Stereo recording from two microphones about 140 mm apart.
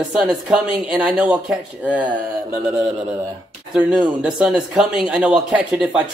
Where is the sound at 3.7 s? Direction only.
5° right (ahead or behind).